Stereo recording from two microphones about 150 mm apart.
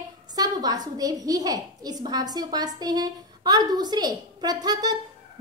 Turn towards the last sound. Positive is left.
turn(degrees=-25)  # may be behind; listen again after turning